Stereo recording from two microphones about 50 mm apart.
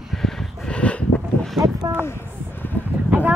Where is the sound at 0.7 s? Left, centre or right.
Left.